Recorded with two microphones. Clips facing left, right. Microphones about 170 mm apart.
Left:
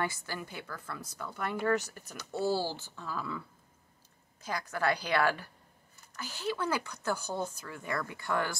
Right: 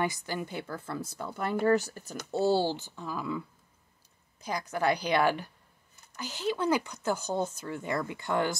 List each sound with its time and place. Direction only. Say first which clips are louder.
0.0 s speech: right 4 dB; 20° right (ahead or behind)